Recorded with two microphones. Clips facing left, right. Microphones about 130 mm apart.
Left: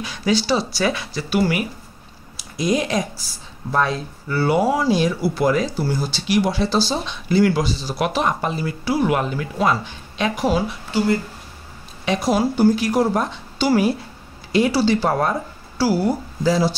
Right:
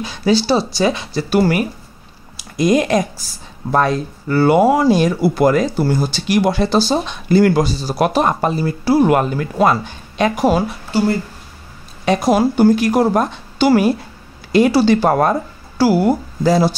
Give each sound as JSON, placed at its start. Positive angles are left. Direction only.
{"t": 0.0, "sound": "speech", "side_deg": -30}
{"t": 1.3, "sound": "speech", "side_deg": -45}
{"t": 2.5, "sound": "speech", "side_deg": -55}
{"t": 12.0, "sound": "a woman's voice", "side_deg": -50}